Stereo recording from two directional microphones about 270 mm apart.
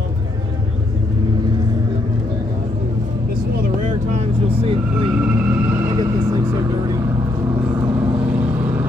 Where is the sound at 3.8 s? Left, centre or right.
Right.